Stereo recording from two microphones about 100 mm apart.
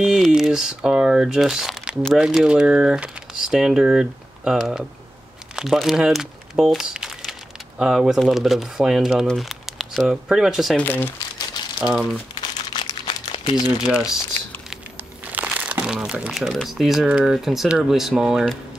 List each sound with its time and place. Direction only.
0.0 s speech: 5° right (ahead or behind)
10.8 s speech: 20° left (ahead or behind)
11.8 s speech: centre (ahead or behind)
12.4 s crumpling: 45° left (ahead or behind)
15.3 s speech: 15° right (ahead or behind)